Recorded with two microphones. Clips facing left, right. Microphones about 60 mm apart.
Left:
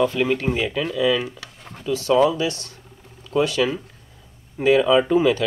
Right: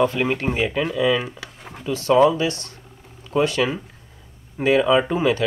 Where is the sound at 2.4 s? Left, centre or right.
Right.